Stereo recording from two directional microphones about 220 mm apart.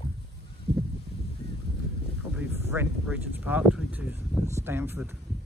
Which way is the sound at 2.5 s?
10° right (ahead or behind).